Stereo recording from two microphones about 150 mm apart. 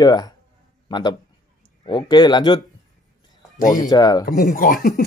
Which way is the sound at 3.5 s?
65° left (ahead or behind).